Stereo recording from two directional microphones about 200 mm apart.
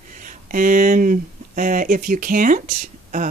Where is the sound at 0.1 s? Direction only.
40° right (ahead or behind).